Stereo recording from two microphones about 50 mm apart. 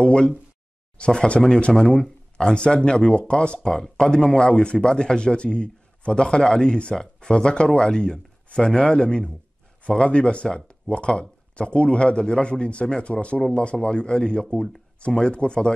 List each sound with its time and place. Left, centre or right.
0.0 s speech: centre